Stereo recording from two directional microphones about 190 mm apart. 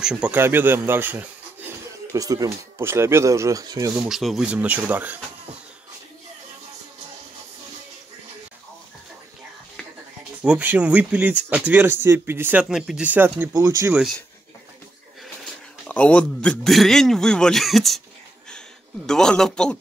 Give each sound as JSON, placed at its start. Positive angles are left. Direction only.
{"t": 0.0, "sound": "speech", "side_deg": -5}
{"t": 3.9, "sound": "speech", "side_deg": -5}
{"t": 10.4, "sound": "speech", "side_deg": -5}
{"t": 15.9, "sound": "a man's voice", "side_deg": 5}
{"t": 19.0, "sound": "a man's voice", "side_deg": 5}